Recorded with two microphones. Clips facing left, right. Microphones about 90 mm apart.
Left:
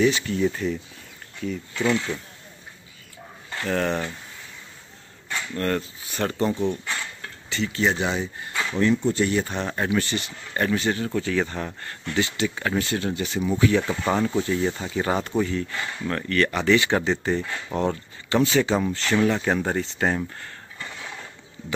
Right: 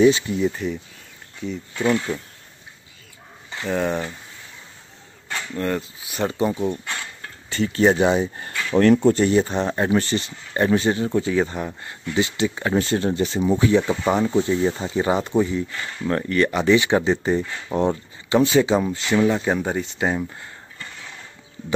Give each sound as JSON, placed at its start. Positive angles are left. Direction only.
{"t": 0.0, "sound": "speech", "side_deg": -25}
{"t": 0.4, "sound": "speech", "side_deg": -5}
{"t": 1.7, "sound": "speech", "side_deg": -25}
{"t": 3.5, "sound": "speech", "side_deg": -10}
{"t": 5.5, "sound": "speech", "side_deg": -10}
{"t": 7.4, "sound": "speech", "side_deg": -40}
{"t": 8.7, "sound": "speech", "side_deg": -60}
{"t": 9.1, "sound": "speech", "side_deg": -30}